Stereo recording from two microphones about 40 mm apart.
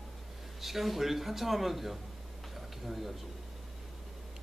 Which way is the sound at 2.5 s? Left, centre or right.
Centre.